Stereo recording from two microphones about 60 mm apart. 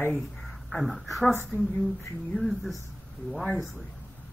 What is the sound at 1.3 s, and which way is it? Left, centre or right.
Speech, left.